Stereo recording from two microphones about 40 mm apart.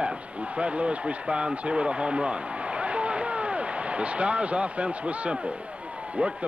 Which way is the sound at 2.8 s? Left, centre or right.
Right.